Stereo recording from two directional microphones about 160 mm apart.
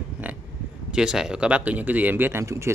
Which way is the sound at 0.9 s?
5° right (ahead or behind).